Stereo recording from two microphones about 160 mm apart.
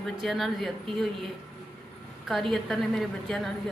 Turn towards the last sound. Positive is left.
turn(degrees=0)  # may be behind; listen again after turning